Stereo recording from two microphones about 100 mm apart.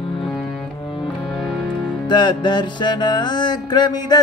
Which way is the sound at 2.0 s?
50° left (ahead or behind).